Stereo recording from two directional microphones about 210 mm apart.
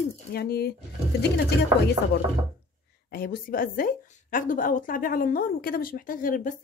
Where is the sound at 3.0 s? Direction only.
45° left (ahead or behind).